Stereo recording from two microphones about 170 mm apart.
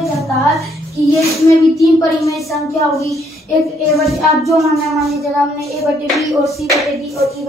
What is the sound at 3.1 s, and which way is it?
A child's voice, centre (ahead or behind).